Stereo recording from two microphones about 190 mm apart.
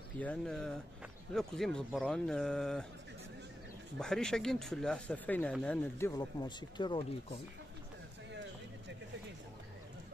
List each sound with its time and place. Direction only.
0.2 s speech: 5° left (ahead or behind)
4.0 s speech: 5° left (ahead or behind)
6.4 s speech: 25° left (ahead or behind)
8.3 s a sound: 70° right (ahead or behind)